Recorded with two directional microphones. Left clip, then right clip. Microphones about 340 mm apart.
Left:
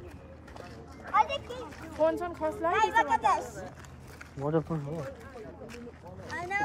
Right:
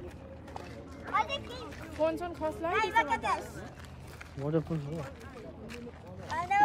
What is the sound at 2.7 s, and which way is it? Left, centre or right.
A woman's voice, centre.